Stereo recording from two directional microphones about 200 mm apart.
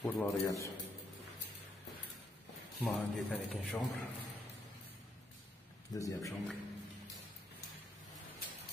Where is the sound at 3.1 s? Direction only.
Centre (ahead or behind).